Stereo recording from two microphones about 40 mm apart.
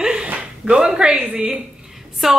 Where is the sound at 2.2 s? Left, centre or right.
Centre.